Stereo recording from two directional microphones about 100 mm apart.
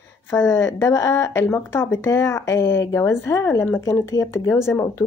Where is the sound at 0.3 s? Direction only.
25° left (ahead or behind).